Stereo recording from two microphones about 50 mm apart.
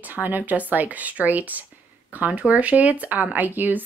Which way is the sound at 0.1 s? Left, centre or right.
Right.